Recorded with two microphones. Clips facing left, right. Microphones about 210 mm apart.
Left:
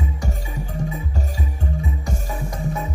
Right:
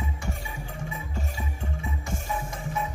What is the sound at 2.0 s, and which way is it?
Music, 40° left (ahead or behind).